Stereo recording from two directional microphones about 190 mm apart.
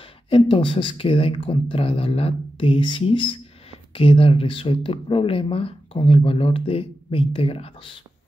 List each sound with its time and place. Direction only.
0.0 s speech: 30° left (ahead or behind)